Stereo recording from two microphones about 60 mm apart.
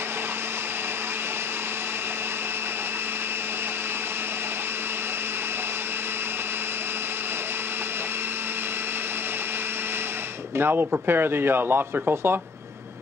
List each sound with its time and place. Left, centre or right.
10.6 s speech: right